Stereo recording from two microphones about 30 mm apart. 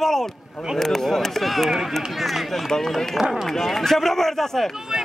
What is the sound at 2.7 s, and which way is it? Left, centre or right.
Speech, left.